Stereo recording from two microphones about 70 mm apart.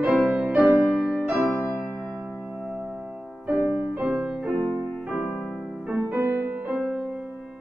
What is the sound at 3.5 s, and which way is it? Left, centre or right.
Music, centre.